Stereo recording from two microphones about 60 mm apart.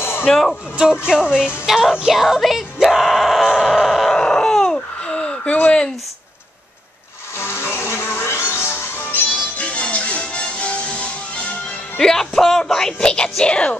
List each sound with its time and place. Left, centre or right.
0.3 s speech: centre
0.7 s speech: centre
1.7 s yell: centre
4.2 s a sound: centre
7.3 s music: left
9.7 s music: left
12.0 s speech: centre